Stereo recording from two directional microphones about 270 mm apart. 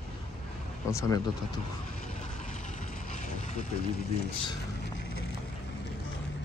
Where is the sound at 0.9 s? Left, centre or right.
Centre.